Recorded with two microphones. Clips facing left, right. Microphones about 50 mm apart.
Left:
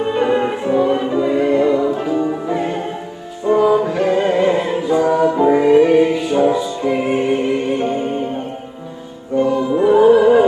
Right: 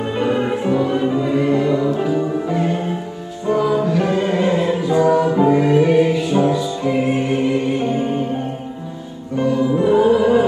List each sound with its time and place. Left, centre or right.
0.0 s music: centre
9.4 s music: centre